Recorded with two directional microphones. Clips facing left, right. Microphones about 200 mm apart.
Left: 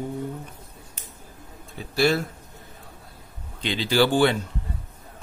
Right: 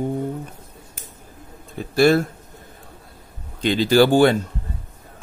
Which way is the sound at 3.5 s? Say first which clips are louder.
Right 6 dB; 45° right (ahead or behind).